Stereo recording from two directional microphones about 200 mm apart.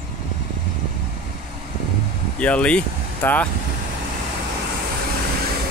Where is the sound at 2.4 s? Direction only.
5° left (ahead or behind).